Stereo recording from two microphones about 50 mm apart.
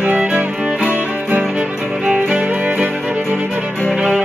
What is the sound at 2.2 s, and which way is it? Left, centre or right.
Music, right.